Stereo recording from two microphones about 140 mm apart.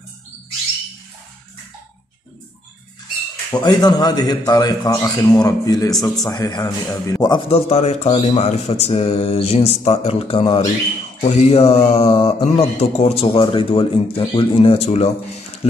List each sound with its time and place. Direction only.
3.5 s a man's voice: 30° left (ahead or behind)
7.4 s speech: 45° left (ahead or behind)